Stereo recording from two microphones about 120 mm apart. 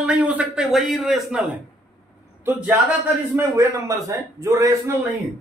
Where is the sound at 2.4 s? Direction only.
20° right (ahead or behind).